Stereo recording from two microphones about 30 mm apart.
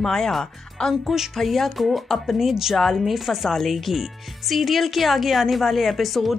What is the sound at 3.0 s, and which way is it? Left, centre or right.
A woman's voice, centre.